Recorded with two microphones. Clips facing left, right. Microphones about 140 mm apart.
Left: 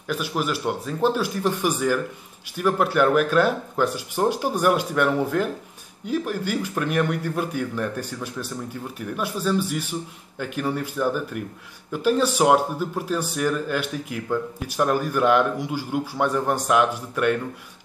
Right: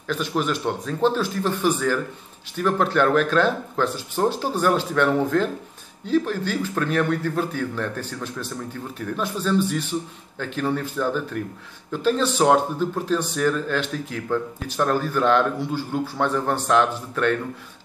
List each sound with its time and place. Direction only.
0.1 s speech: 10° left (ahead or behind)